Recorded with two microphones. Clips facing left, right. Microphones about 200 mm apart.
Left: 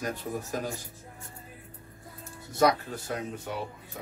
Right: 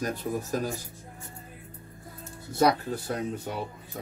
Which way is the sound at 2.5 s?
30° right (ahead or behind).